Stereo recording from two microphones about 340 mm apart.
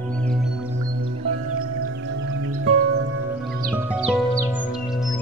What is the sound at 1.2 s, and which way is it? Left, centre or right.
Music, right.